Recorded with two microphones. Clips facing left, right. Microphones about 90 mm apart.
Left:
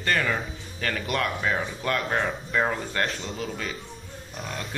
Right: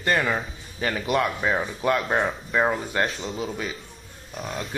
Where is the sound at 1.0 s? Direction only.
Centre (ahead or behind).